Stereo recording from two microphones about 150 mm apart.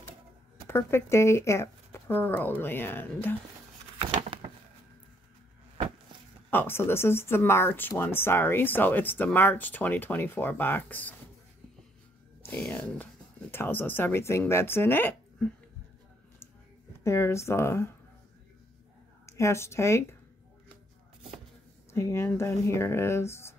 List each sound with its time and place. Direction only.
0.7 s speech: 15° left (ahead or behind)
4.0 s a sound: 35° right (ahead or behind)
6.5 s speech: 15° left (ahead or behind)
12.4 s speech: 10° left (ahead or behind)
17.0 s speech: 20° left (ahead or behind)
19.2 s speech: 20° left (ahead or behind)
21.9 s speech: 20° left (ahead or behind)